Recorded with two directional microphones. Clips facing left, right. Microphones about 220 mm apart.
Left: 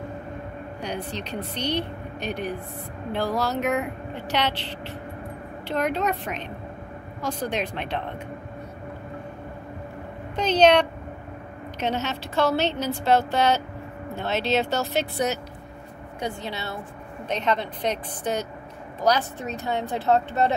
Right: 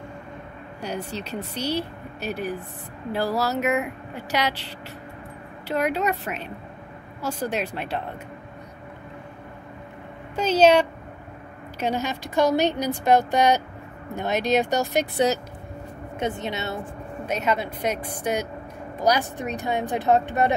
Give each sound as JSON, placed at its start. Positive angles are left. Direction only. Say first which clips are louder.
{"t": 1.1, "sound": "a woman's voice", "louder": "even", "side_deg": -5}
{"t": 5.7, "sound": "a woman's voice", "louder": "right 1 dB", "side_deg": -10}
{"t": 10.3, "sound": "a woman's voice", "louder": "right 1 dB", "side_deg": -5}
{"t": 16.2, "sound": "a woman's voice", "louder": "right 3 dB", "side_deg": -20}
{"t": 17.3, "sound": "a woman's voice", "louder": "even", "side_deg": -10}